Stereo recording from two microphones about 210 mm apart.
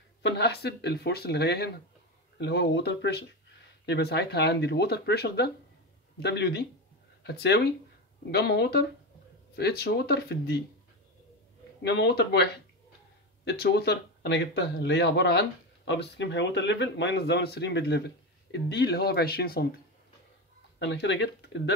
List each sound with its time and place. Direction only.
0.2 s speech: 50° left (ahead or behind)
11.8 s speech: 55° left (ahead or behind)
13.5 s speech: 50° left (ahead or behind)
20.8 s speech: 60° left (ahead or behind)